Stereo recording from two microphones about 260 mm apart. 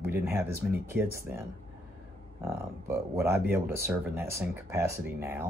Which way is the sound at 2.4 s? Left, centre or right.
Centre.